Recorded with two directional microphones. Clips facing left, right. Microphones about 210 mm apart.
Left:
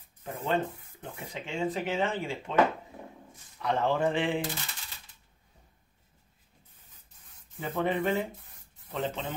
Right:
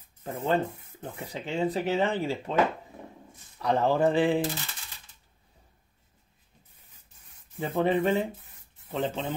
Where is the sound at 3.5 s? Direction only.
35° right (ahead or behind).